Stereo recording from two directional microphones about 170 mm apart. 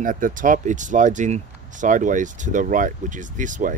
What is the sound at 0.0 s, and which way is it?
Speech, 50° right (ahead or behind).